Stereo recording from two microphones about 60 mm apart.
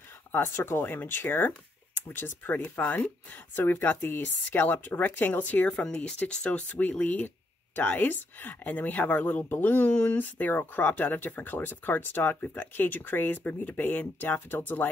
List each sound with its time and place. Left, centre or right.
0.3 s speech: left